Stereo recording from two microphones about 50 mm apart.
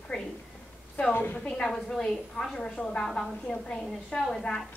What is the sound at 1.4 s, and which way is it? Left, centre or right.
A woman's voice, centre.